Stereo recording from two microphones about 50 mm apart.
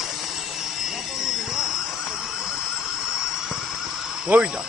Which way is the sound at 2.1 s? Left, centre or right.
Centre.